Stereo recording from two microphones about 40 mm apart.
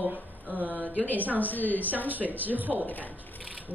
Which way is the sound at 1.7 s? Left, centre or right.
Right.